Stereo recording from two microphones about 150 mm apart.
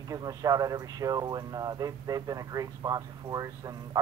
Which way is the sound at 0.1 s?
25° right (ahead or behind).